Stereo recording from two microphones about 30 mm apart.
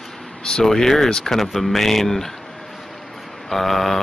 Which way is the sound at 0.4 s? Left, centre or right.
Left.